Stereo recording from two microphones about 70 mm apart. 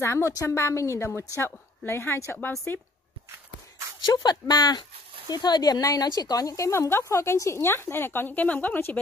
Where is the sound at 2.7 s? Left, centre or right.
Left.